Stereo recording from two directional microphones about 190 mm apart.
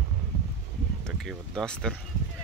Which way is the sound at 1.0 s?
5° left (ahead or behind).